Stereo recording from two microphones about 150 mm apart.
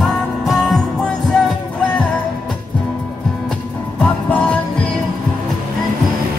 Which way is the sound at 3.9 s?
10° left (ahead or behind).